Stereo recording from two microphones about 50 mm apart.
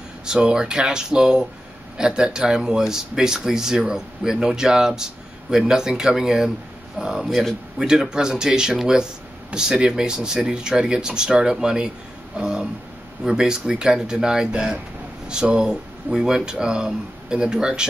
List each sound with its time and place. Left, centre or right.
0.2 s speech: centre
7.8 s speech: centre